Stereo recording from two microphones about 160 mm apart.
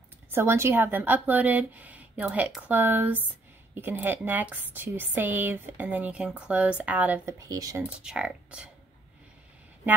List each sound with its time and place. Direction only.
0.3 s speech: 15° right (ahead or behind)
7.3 s speech: 20° right (ahead or behind)
8.0 s speech: 5° right (ahead or behind)